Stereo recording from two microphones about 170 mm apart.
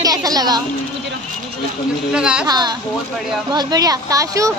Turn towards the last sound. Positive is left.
turn(degrees=-20)  # may be behind; listen again after turning